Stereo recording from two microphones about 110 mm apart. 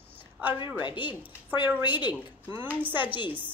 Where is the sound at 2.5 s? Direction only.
20° right (ahead or behind).